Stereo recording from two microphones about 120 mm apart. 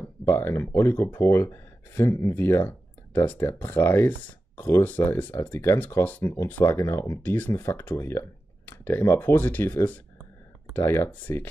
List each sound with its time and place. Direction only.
0.0 s speech: 20° left (ahead or behind)